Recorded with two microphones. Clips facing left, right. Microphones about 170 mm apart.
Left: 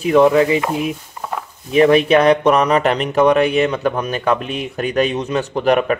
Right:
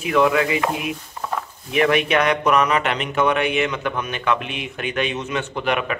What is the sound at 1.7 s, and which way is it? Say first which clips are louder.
Speech: left 7 dB; 30° left (ahead or behind).